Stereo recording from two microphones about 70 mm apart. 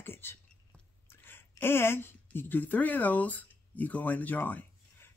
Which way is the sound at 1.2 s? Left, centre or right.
Left.